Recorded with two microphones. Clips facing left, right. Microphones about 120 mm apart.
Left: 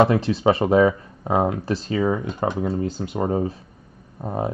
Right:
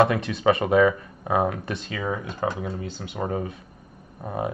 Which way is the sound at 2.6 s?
35° left (ahead or behind).